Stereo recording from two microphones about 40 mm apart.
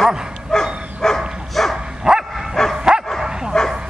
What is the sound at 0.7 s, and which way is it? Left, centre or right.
Dog, right.